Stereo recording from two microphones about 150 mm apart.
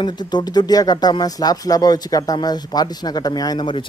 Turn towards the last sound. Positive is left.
turn(degrees=30)  # may be behind; listen again after turning